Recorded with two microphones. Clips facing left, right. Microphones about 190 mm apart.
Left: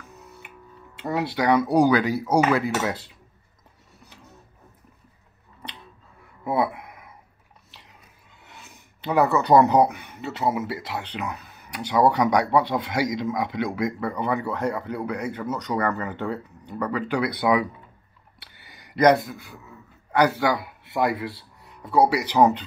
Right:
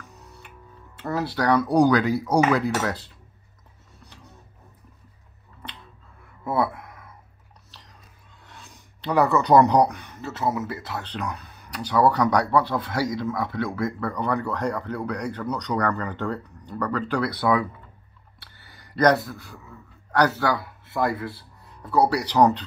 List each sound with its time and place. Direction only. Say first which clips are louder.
0.4 s music: left 1 dB; 10° left (ahead or behind)
1.0 s speech: left 1 dB; 10° left (ahead or behind)
4.0 s music: even; 5° left (ahead or behind)
6.4 s a sound: left 1 dB; 15° left (ahead or behind)
8.5 s speech: even; 5° left (ahead or behind)
18.7 s a man's voice: left 2 dB; 10° left (ahead or behind)
20.6 s a sound: left 1 dB; 25° left (ahead or behind)
21.9 s speech: left 1 dB; 10° left (ahead or behind)